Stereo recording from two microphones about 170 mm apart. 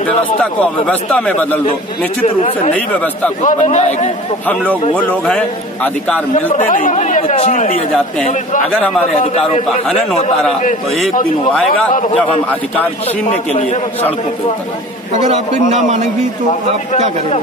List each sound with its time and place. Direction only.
0.4 s a man's voice: 5° left (ahead or behind)
2.2 s speech: 40° left (ahead or behind)
2.7 s a man's voice: 10° left (ahead or behind)
3.4 s a man's voice: 45° left (ahead or behind)
4.9 s speech: 5° left (ahead or behind)
6.7 s speech: 50° left (ahead or behind)
13.3 s a man's voice: 45° left (ahead or behind)
15.7 s a man's voice: 45° right (ahead or behind)